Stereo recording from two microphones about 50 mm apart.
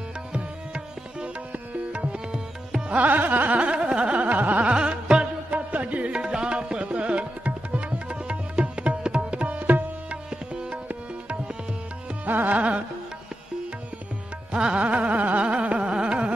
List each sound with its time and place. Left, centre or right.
0.3 s tabla: right
2.9 s music: right
4.7 s music: centre
5.7 s tabla: right
12.3 s carnatic music: right
14.5 s carnatic music: centre